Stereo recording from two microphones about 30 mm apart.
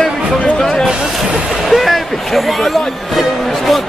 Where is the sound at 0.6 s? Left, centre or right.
Centre.